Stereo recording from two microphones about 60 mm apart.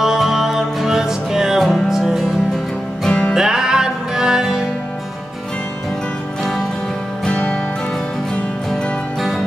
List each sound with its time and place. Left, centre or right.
0.0 s music: centre
3.1 s music: centre
3.3 s music: centre
7.2 s music: centre